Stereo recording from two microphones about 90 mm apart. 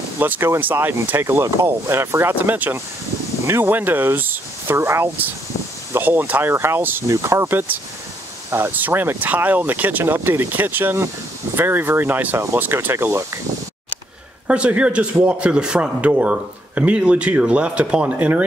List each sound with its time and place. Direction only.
0.2 s speech: 20° right (ahead or behind)
14.5 s speech: 15° right (ahead or behind)